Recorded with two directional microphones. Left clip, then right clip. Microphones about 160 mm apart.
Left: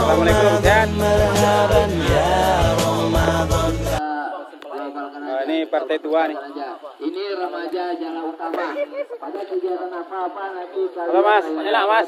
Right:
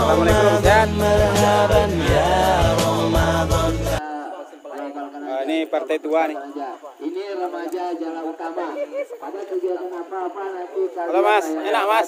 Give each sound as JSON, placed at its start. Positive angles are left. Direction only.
{"t": 0.0, "sound": "music", "side_deg": 0}
{"t": 5.3, "sound": "a sound", "side_deg": -15}
{"t": 7.2, "sound": "a man's voice", "side_deg": -90}
{"t": 11.1, "sound": "a man's voice", "side_deg": -15}